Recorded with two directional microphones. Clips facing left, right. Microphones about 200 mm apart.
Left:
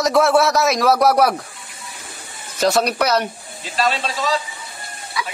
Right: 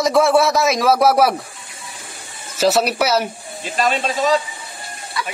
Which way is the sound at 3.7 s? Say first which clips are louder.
Right 1 dB; 20° right (ahead or behind).